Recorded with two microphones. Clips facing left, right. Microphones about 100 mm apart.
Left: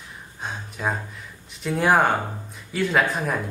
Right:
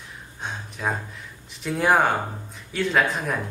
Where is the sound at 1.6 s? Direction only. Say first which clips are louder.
Left 1 dB; centre (ahead or behind).